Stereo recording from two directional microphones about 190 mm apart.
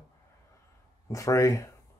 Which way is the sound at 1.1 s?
15° left (ahead or behind).